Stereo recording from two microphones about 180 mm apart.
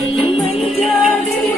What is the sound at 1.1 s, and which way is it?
Music, 10° left (ahead or behind).